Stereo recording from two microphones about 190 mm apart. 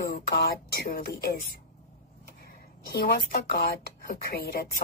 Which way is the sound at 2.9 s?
50° left (ahead or behind).